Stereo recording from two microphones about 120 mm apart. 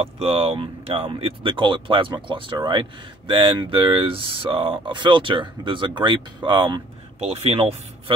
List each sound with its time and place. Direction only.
0.0 s speech: 50° right (ahead or behind)
7.2 s speech: 60° right (ahead or behind)